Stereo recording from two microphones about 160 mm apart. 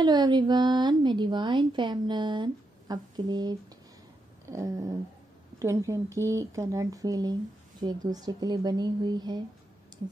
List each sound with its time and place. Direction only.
0.0 s speech: 25° right (ahead or behind)
4.5 s cat: 20° right (ahead or behind)
5.6 s speech: 20° right (ahead or behind)